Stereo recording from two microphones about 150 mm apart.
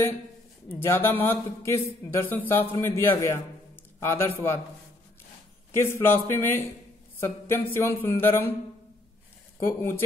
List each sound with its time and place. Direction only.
0.7 s a man's voice: 15° left (ahead or behind)
5.7 s speech: 20° left (ahead or behind)
9.7 s speech: 15° left (ahead or behind)